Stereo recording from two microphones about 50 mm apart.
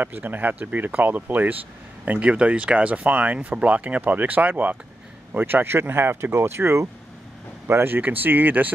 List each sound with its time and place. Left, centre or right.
0.0 s speech: right
7.6 s speech: right